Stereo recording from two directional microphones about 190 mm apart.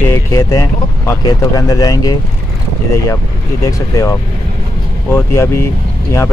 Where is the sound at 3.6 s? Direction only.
15° left (ahead or behind).